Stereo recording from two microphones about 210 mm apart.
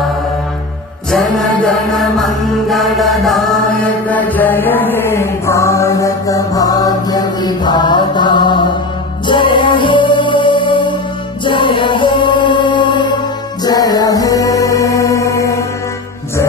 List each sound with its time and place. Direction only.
1.1 s chant: centre (ahead or behind); by 8.7 s 20° left (ahead or behind)
9.3 s music: 20° left (ahead or behind)